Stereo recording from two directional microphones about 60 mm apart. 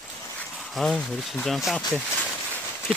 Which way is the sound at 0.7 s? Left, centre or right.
Centre.